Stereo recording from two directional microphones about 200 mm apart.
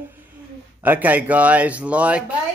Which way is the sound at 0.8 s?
10° right (ahead or behind).